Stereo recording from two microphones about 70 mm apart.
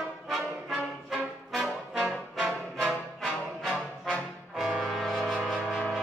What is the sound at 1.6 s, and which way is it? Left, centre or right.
Brass instrument, centre.